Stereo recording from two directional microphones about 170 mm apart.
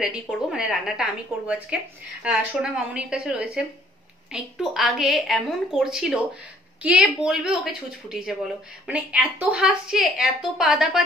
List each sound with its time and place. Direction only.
0.0 s a woman's voice: 5° right (ahead or behind)